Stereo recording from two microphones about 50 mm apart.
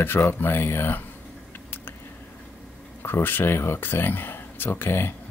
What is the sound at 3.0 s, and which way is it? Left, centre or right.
Speech, left.